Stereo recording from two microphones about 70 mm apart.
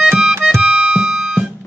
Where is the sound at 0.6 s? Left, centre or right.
Centre.